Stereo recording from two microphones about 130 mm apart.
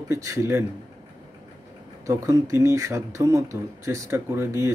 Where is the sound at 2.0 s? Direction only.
25° right (ahead or behind).